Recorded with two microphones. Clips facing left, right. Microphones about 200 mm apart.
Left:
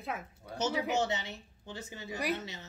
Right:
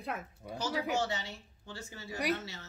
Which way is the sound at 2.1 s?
Centre (ahead or behind).